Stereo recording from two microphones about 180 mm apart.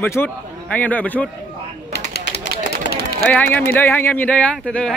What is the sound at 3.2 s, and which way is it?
A man's voice, 10° left (ahead or behind).